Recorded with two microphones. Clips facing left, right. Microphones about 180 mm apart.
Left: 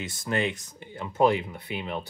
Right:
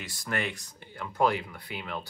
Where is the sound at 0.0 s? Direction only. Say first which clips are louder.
Left 5 dB; 20° left (ahead or behind).